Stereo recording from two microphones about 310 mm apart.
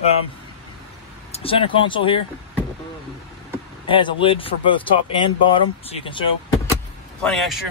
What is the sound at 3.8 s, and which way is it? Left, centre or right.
Speech, centre.